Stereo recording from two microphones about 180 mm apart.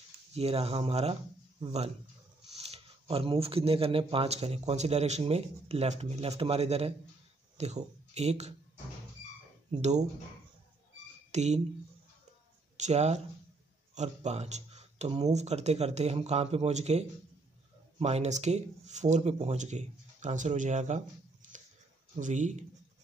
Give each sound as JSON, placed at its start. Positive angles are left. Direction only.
{"t": 0.3, "sound": "speech", "side_deg": -35}
{"t": 9.7, "sound": "speech", "side_deg": -40}
{"t": 11.3, "sound": "speech", "side_deg": -40}
{"t": 12.7, "sound": "speech", "side_deg": -40}